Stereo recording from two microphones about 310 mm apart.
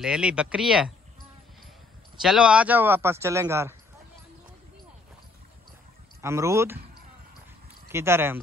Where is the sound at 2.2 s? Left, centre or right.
Centre.